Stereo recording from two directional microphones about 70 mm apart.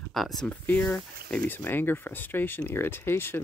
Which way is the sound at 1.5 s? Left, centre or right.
Left.